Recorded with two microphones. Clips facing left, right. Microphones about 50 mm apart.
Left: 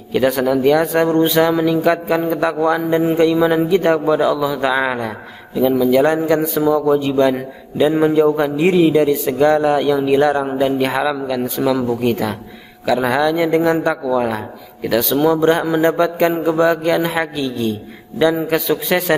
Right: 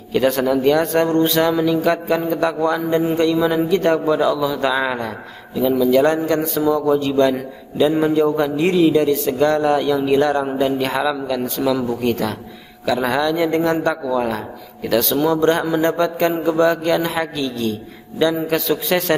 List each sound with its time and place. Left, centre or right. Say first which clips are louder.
0.1 s a man's voice: left 1 dB; centre